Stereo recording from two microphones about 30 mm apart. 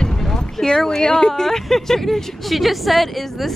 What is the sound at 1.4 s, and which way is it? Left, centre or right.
A woman's voice, centre.